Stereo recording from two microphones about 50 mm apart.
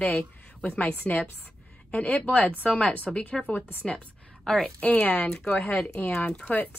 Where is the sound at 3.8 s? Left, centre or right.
Left.